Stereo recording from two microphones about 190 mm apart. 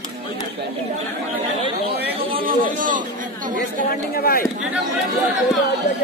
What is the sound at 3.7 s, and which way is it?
Speech, 50° left (ahead or behind).